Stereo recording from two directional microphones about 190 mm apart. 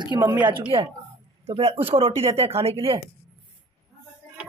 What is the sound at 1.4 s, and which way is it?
Speech, 30° right (ahead or behind).